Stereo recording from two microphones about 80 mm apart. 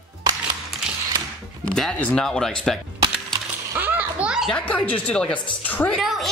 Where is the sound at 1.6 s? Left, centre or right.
Centre.